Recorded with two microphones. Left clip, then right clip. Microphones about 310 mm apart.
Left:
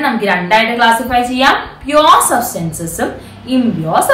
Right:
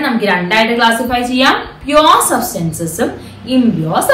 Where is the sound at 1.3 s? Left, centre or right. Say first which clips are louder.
Left 1 dB; centre.